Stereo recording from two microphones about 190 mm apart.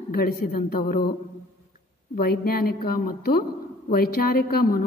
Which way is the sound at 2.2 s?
50° left (ahead or behind).